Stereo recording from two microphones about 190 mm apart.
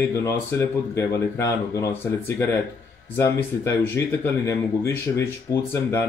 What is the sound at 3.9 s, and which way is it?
Speech, 15° left (ahead or behind).